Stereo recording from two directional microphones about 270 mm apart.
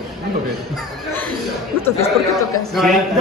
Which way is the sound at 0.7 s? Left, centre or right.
Centre.